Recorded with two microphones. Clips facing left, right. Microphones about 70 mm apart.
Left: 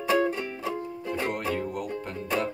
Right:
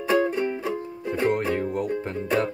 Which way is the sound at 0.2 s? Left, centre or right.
Right.